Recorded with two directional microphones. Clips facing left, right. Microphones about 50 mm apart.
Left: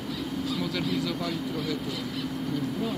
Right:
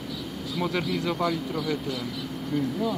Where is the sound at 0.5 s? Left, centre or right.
Right.